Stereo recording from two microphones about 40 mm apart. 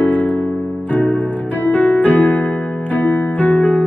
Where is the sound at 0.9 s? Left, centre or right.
Left.